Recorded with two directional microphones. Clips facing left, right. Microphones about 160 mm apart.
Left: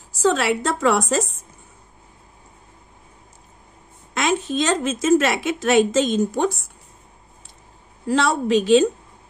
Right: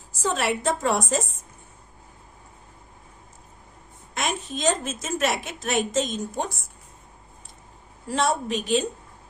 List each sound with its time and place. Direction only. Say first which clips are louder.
0.2 s a woman's voice: left 6 dB; 80° left
4.1 s a woman's voice: left 7 dB; 90° left
8.1 s a woman's voice: left 6 dB; 90° left